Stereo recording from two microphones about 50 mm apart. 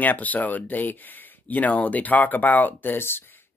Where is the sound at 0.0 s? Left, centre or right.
Left.